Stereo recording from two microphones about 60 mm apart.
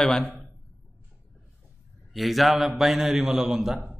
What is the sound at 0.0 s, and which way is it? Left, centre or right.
Speech, centre.